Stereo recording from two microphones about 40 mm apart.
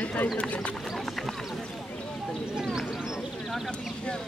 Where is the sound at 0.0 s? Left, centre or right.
Left.